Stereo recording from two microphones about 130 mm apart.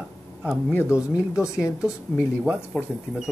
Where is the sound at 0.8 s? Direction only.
5° right (ahead or behind).